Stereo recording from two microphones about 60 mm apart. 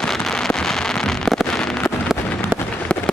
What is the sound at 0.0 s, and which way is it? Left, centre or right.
Fireworks, centre.